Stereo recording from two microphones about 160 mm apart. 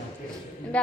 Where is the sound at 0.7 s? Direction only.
10° left (ahead or behind).